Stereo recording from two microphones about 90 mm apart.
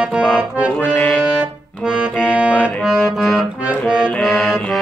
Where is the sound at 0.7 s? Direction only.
10° left (ahead or behind).